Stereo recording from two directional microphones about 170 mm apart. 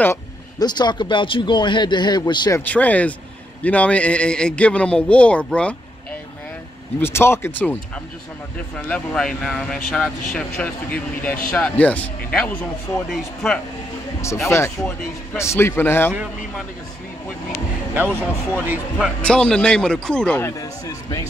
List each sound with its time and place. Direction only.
0.0 s speech: 20° left (ahead or behind)
2.7 s speech: 10° left (ahead or behind)
7.0 s a man's voice: 15° left (ahead or behind)
15.3 s speech: 15° left (ahead or behind)
16.1 s speech: 5° right (ahead or behind)
17.9 s speech: 10° right (ahead or behind)
19.2 s a man's voice: 5° left (ahead or behind)